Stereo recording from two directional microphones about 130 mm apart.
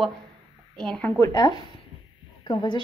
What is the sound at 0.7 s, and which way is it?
Speech, 5° left (ahead or behind).